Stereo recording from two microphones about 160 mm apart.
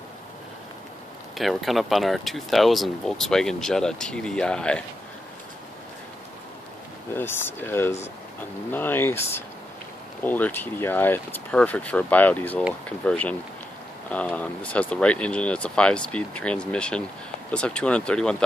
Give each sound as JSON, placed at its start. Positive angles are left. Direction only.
{"t": 1.3, "sound": "speech", "side_deg": 0}
{"t": 7.2, "sound": "speech", "side_deg": 15}